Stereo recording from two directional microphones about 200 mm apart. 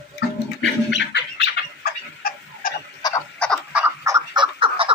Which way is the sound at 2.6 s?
45° left (ahead or behind).